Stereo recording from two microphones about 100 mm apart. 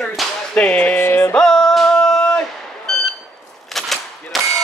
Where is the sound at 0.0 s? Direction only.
Centre (ahead or behind).